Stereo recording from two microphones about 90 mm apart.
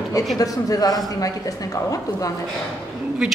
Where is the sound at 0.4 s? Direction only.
40° left (ahead or behind).